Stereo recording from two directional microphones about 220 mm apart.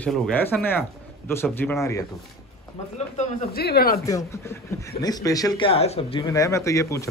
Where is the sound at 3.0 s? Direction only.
30° left (ahead or behind).